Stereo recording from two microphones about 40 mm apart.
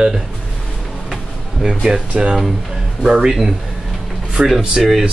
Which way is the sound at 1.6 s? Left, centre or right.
Centre.